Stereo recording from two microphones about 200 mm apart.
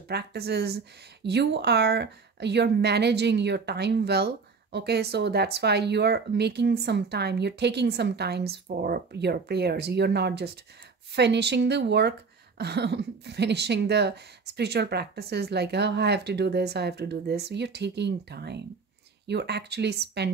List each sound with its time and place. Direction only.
0.1 s a woman's voice: 55° right (ahead or behind)